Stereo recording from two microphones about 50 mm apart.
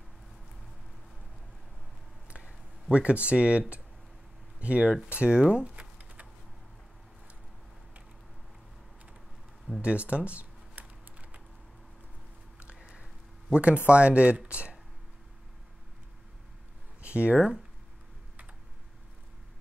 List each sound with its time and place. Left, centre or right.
2.2 s a sound: right
4.6 s speech: right
5.1 s typing: right
9.8 s typing: right
12.9 s speech: right
17.0 s a sound: right